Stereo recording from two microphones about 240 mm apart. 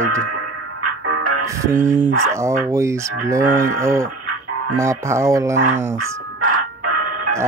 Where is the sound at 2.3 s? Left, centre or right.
Centre.